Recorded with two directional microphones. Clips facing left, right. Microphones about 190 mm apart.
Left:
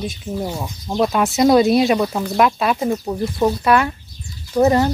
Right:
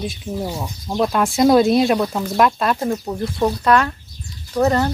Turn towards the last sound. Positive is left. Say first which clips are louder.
# left 3 dB
turn(degrees=10)  # may be behind; listen again after turning